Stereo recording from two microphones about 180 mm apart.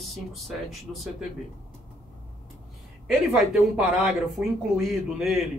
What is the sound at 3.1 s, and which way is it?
Speech, 5° right (ahead or behind).